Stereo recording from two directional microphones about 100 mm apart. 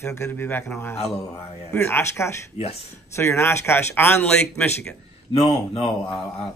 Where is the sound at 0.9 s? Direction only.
90° left.